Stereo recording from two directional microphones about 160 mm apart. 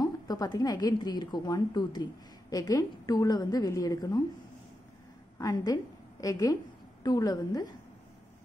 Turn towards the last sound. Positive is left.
turn(degrees=25)  # may be behind; listen again after turning